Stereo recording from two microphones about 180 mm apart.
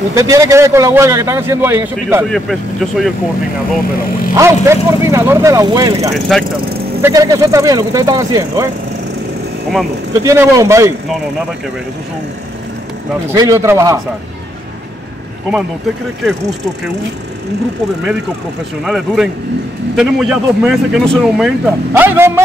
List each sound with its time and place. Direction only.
0.1 s a man's voice: 20° right (ahead or behind)
2.2 s a man's voice: centre (ahead or behind)
4.4 s a man's voice: 15° right (ahead or behind)
6.1 s a man's voice: centre (ahead or behind)
7.0 s speech: 20° right (ahead or behind)
10.1 s a man's voice: 15° right (ahead or behind)
13.3 s a man's voice: 15° right (ahead or behind)
18.9 s a man's voice: centre (ahead or behind)
21.9 s a man's voice: 10° right (ahead or behind)